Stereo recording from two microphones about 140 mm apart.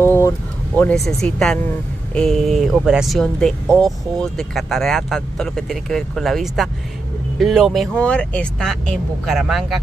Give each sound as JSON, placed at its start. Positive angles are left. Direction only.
{"t": 0.0, "sound": "vehicle", "side_deg": 15}
{"t": 0.9, "sound": "speech", "side_deg": 5}